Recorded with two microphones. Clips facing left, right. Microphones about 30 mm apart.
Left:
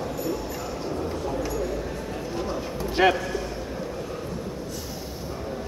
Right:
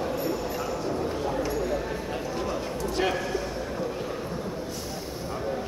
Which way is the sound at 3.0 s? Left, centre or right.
Left.